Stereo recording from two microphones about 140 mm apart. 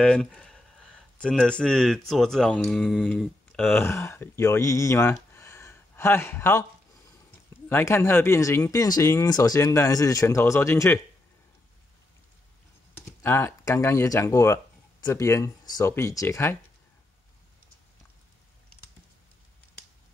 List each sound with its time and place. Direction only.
0.0 s speech: 5° left (ahead or behind)
5.3 s a sound: 20° left (ahead or behind)
7.2 s speech: 15° left (ahead or behind)
12.9 s speech: 15° left (ahead or behind)